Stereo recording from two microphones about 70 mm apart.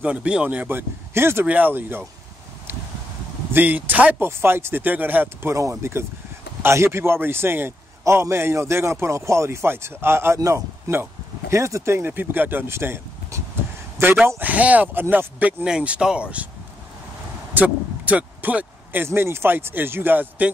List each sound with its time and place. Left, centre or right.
0.0 s speech: centre
3.5 s speech: right
5.5 s speech: right
14.2 s speech: right
17.6 s speech: right